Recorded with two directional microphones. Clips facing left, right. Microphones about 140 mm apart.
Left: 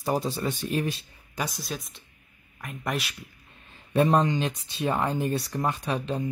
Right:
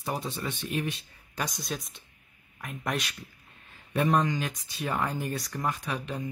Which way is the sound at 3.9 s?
30° left (ahead or behind).